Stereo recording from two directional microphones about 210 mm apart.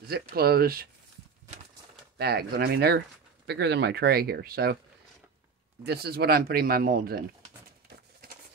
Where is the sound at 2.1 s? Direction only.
50° right (ahead or behind).